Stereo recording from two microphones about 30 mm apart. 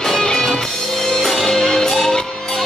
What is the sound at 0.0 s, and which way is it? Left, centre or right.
Music, centre.